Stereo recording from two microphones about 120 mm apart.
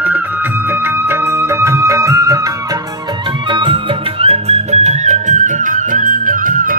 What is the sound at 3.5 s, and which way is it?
Music, 45° right (ahead or behind).